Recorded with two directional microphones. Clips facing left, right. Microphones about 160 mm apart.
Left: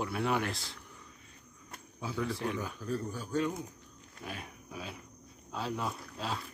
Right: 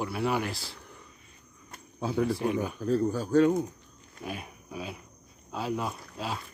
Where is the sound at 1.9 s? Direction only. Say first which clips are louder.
Right 8 dB; 65° right (ahead or behind).